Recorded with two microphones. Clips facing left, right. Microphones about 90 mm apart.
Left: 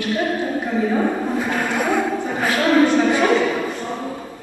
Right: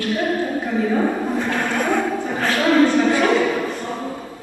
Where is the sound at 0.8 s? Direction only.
5° left (ahead or behind).